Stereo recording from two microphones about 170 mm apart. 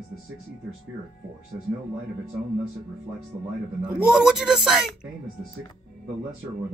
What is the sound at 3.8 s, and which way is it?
Speech, 5° right (ahead or behind).